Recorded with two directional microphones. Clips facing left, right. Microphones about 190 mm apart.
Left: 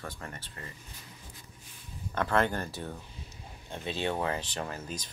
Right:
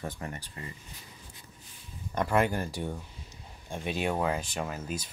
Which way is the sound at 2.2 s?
10° right (ahead or behind).